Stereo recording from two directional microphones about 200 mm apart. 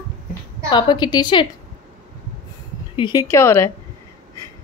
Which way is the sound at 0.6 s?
25° left (ahead or behind).